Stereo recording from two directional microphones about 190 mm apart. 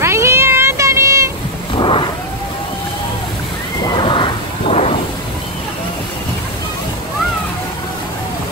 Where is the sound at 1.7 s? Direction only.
25° left (ahead or behind).